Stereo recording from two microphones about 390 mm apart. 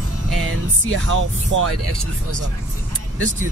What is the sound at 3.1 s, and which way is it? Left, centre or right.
Speech, right.